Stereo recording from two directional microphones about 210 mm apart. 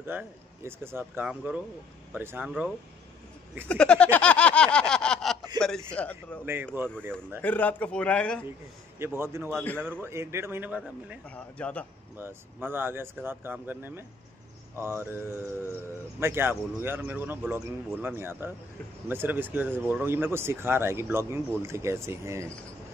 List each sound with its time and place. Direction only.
0.1 s speech: 10° right (ahead or behind)
3.6 s a sound: 5° left (ahead or behind)
5.6 s speech: 5° left (ahead or behind)
6.4 s speech: 10° right (ahead or behind)
7.4 s speech: 5° left (ahead or behind)
9.0 s speech: 10° right (ahead or behind)
10.8 s speech: 5° left (ahead or behind)
12.2 s speech: 10° right (ahead or behind)
16.2 s speech: 10° right (ahead or behind)